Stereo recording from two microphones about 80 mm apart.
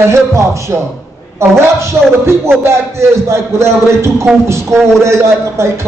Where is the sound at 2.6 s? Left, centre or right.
Right.